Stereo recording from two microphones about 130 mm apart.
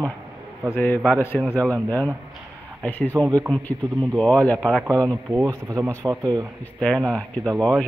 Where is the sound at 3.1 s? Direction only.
30° right (ahead or behind).